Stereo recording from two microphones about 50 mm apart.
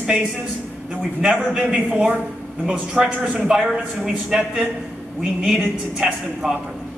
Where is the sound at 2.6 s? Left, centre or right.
Centre.